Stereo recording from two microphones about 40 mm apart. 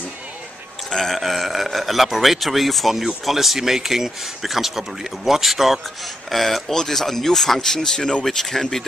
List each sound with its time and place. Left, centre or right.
0.8 s speech: centre